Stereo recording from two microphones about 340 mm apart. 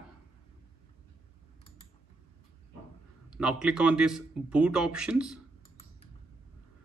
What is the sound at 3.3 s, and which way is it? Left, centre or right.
A man's voice, centre.